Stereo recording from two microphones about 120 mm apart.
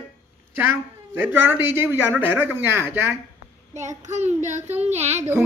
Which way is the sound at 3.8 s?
80° right.